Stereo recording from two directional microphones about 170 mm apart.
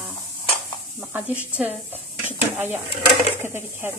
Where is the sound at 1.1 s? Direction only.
10° right (ahead or behind).